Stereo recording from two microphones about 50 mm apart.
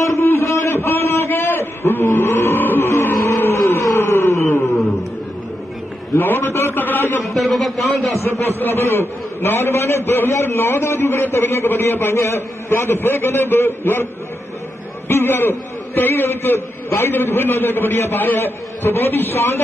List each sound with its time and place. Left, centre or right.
0.0 s a sound: left
3.8 s a sound: left
4.6 s a sound: centre
6.1 s a man's voice: left
6.8 s a man's voice: left
7.2 s speech: centre
8.2 s a man's voice: left
8.5 s a man's voice: left
12.2 s a man's voice: left
15.0 s a man's voice: left